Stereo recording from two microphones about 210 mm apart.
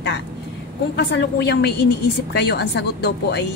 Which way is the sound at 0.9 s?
55° left (ahead or behind).